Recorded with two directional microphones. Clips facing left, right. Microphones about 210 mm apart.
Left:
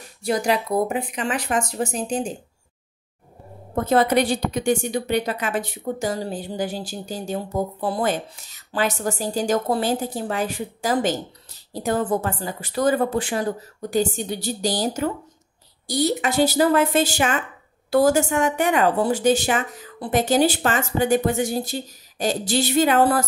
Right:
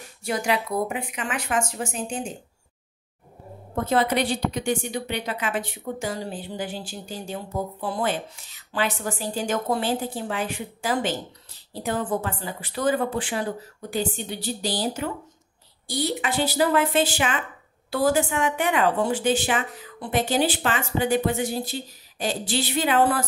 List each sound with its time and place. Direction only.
0.2 s speech: 35° left (ahead or behind)
3.7 s a woman's voice: 45° left (ahead or behind)